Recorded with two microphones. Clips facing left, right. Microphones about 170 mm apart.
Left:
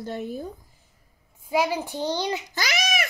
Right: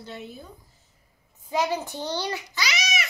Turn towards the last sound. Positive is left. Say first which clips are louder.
# left 3 dB
turn(degrees=55)  # may be behind; listen again after turning